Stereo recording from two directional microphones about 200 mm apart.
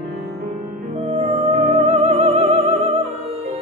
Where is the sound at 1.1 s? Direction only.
30° right (ahead or behind).